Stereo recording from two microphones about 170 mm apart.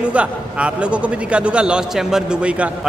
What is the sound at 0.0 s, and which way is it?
A man's voice, 5° right (ahead or behind).